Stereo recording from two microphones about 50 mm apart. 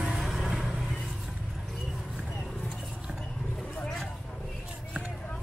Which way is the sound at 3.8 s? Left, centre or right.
Centre.